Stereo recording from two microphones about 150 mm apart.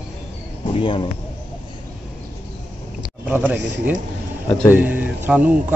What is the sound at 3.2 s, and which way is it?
Speech, 10° right (ahead or behind).